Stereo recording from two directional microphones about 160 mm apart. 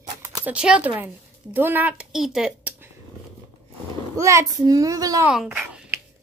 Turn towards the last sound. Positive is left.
turn(degrees=-10)  # may be behind; listen again after turning